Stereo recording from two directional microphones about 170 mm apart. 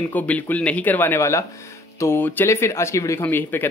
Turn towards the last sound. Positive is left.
turn(degrees=10)  # may be behind; listen again after turning